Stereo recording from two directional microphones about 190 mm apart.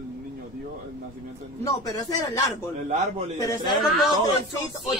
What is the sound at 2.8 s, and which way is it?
Speech, 35° right (ahead or behind).